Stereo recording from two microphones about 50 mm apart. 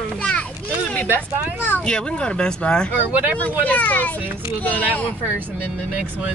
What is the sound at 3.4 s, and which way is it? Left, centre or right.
Speech, left.